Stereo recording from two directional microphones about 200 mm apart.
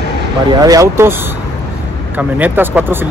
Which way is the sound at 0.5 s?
15° right (ahead or behind).